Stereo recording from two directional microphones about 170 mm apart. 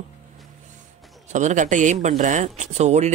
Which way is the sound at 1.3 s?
45° right (ahead or behind).